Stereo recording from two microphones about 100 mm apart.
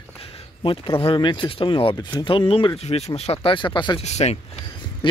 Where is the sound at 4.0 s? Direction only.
90° left.